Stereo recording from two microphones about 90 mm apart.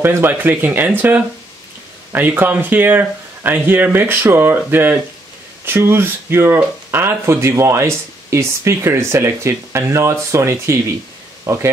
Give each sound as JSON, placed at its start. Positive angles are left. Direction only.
{"t": 0.0, "sound": "speech", "side_deg": -25}